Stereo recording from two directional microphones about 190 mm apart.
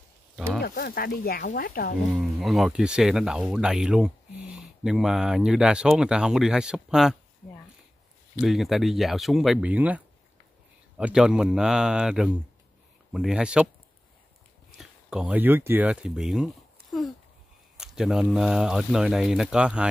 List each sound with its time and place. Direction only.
0.6 s speech: 50° left (ahead or behind)
2.3 s speech: centre (ahead or behind)
8.4 s speech: centre (ahead or behind)
14.8 s speech: 5° right (ahead or behind)